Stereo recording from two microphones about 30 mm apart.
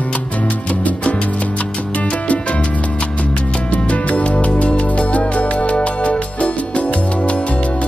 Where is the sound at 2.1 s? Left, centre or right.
Left.